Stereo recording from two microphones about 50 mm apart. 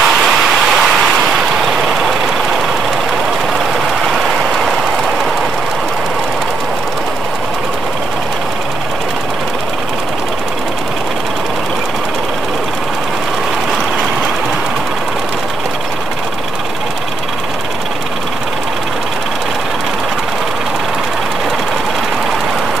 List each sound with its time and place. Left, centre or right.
0.0 s vehicle: centre